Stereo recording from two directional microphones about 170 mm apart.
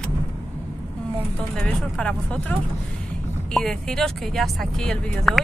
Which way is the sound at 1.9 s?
5° left (ahead or behind).